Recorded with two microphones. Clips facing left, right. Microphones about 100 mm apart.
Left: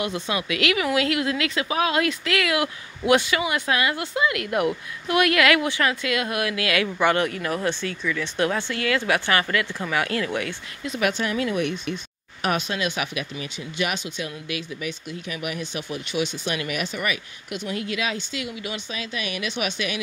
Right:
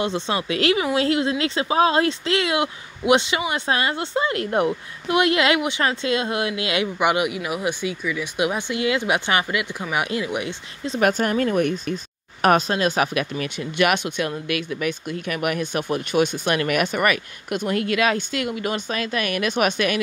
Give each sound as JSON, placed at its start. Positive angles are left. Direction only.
{"t": 0.0, "sound": "speech", "side_deg": -30}
{"t": 11.0, "sound": "speech", "side_deg": -45}
{"t": 13.1, "sound": "speech", "side_deg": -60}